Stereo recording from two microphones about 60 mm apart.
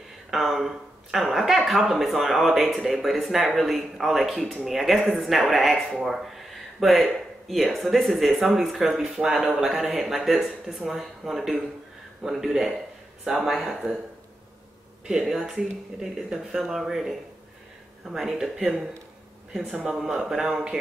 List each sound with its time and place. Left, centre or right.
0.3 s speech: centre
8.9 s speech: centre
15.0 s speech: centre
18.6 s speech: centre